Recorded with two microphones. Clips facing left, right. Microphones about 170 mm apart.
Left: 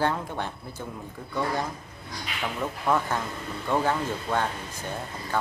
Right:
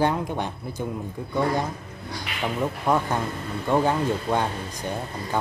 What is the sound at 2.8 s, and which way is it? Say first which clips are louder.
Speech: right 1 dB; 15° right (ahead or behind).